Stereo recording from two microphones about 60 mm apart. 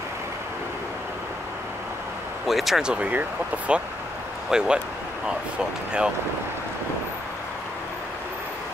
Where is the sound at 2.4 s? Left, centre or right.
Centre.